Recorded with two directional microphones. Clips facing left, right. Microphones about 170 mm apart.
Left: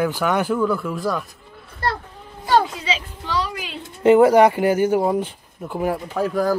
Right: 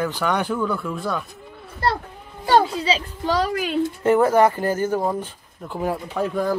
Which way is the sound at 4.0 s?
15° left (ahead or behind).